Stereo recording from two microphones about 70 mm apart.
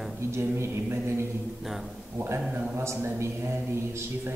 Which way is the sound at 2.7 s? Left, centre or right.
Right.